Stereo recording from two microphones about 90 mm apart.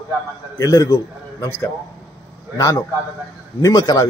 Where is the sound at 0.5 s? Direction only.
40° left (ahead or behind).